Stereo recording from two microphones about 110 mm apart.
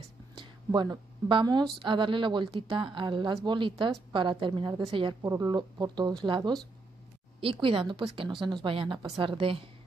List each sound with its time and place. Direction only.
0.7 s a woman's voice: 40° right (ahead or behind)
5.2 s a woman's voice: 30° right (ahead or behind); by 9.7 s 55° right (ahead or behind)